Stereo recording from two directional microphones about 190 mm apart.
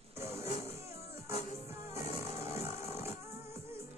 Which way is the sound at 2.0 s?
35° left (ahead or behind).